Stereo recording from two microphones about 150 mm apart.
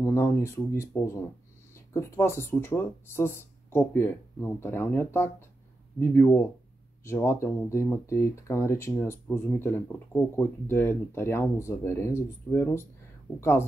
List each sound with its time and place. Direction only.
0.0 s speech: 20° left (ahead or behind)